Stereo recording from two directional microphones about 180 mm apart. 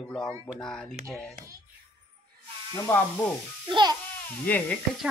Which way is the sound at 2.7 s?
10° left (ahead or behind).